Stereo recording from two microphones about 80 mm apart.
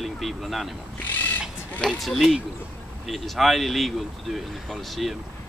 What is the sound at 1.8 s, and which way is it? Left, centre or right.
Speech, centre.